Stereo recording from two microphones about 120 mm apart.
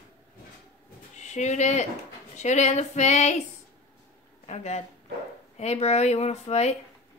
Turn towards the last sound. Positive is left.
turn(degrees=65)  # may be behind; listen again after turning